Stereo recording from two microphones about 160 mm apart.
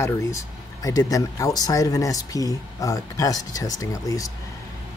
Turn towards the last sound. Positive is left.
turn(degrees=20)  # may be behind; listen again after turning